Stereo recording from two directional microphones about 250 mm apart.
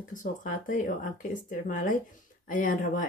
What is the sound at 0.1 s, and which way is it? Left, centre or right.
Speech, left.